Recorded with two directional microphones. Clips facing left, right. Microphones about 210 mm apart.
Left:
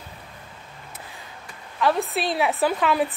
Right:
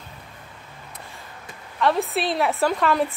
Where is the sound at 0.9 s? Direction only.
Centre (ahead or behind).